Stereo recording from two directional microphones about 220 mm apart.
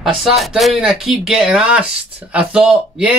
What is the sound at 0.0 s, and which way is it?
Speech, centre (ahead or behind).